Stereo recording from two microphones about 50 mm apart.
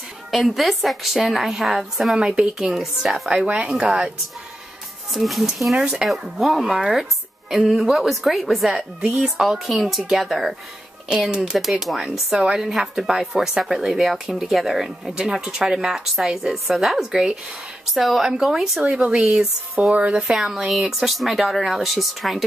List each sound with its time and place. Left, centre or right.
0.3 s speech: centre
2.1 s speech: centre
2.6 s speech: centre
5.1 s speech: centre
5.8 s speech: centre
6.1 s speech: centre
9.2 s speech: centre
9.7 s speech: centre
11.2 s speech: right
11.5 s speech: centre
18.9 s speech: centre
19.9 s speech: right
20.2 s speech: centre